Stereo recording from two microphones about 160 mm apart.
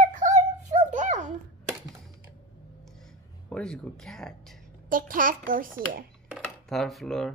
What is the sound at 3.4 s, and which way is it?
Speech, 5° left (ahead or behind).